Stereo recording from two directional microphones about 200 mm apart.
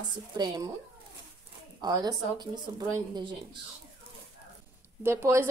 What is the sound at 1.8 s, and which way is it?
Speech, 20° right (ahead or behind).